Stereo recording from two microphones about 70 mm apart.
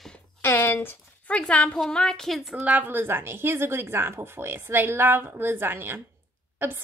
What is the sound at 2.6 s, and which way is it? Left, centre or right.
A woman's voice, right.